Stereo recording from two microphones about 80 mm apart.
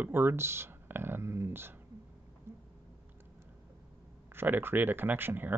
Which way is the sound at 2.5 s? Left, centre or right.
Right.